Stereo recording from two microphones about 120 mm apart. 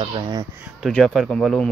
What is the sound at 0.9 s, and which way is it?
Speech, 5° left (ahead or behind).